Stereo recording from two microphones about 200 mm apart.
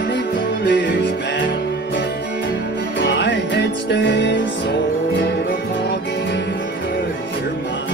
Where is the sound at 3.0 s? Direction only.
60° left (ahead or behind).